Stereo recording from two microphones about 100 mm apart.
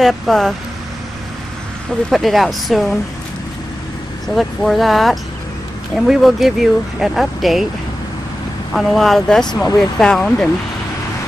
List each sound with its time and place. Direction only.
0.0 s speech: centre (ahead or behind)
2.0 s speech: centre (ahead or behind)
4.4 s speech: centre (ahead or behind)
8.7 s speech: centre (ahead or behind)